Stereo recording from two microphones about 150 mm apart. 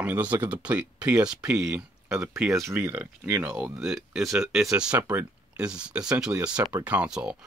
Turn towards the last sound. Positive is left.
turn(degrees=-5)  # may be behind; listen again after turning